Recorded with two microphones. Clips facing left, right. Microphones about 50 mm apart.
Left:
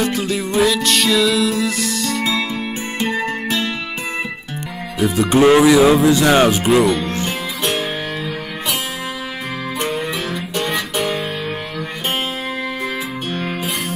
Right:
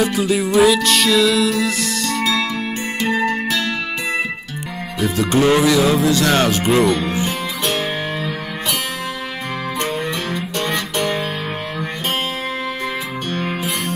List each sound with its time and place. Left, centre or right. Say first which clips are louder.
0.0 s music: right 2 dB; centre
3.0 s music: right 2 dB; left
5.1 s music: left 3 dB; centre
6.7 s speech: left 1 dB; centre
7.2 s music: even; centre
9.8 s music: left 1 dB; centre
13.3 s music: right 2 dB; centre